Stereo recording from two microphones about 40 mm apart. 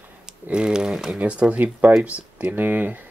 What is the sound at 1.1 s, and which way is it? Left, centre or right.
Speech, right.